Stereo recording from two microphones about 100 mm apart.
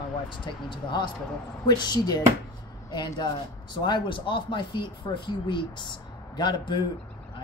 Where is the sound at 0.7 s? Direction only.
45° left (ahead or behind).